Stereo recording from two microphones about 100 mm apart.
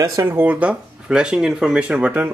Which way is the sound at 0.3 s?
20° right (ahead or behind).